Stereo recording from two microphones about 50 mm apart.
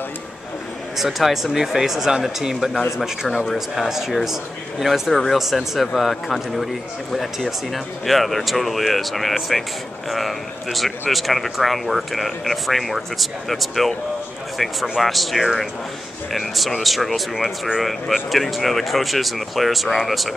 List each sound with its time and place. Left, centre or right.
0.9 s speech: centre
3.4 s speech: centre